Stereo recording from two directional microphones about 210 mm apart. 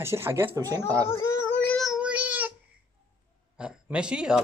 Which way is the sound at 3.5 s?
5° right (ahead or behind).